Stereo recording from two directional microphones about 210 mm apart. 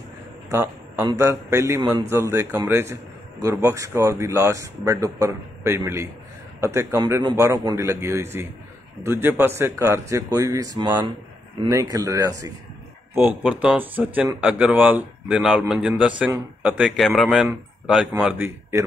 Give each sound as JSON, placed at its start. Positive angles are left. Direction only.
{"t": 0.5, "sound": "a man's voice", "side_deg": -15}